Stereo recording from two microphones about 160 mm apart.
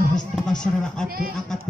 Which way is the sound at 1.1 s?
65° right (ahead or behind).